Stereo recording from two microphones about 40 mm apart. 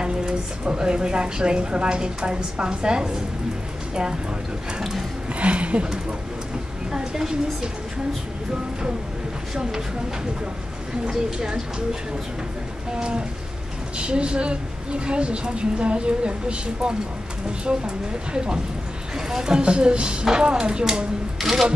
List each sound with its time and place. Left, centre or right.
0.0 s a woman's voice: right
5.3 s a sound: right
6.9 s a woman's voice: centre
9.6 s a woman's voice: centre
11.1 s a woman's voice: centre
21.4 s a woman's voice: centre